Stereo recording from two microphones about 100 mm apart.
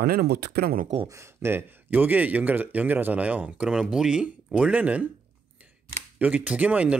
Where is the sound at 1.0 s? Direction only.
30° right (ahead or behind).